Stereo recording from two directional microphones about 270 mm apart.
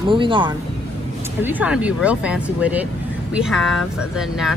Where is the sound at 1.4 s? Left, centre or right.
Centre.